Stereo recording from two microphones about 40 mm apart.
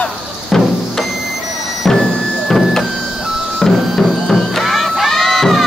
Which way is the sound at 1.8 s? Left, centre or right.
Centre.